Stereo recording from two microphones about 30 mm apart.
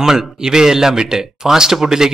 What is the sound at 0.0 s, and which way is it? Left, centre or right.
Speech, centre.